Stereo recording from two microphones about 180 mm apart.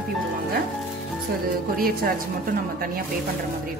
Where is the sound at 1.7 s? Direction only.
55° right (ahead or behind).